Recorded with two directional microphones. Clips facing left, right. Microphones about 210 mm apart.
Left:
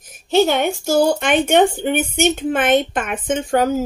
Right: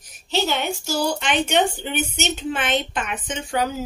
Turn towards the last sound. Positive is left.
turn(degrees=45)  # may be behind; listen again after turning